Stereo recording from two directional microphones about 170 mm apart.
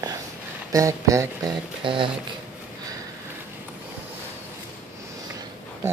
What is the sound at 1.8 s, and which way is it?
Speech, 30° right (ahead or behind).